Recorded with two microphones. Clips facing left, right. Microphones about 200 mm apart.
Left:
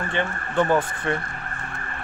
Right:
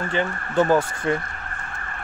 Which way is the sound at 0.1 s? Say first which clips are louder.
Right 2 dB; 10° right (ahead or behind).